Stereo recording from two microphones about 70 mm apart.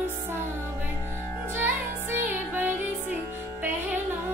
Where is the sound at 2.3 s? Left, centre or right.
Right.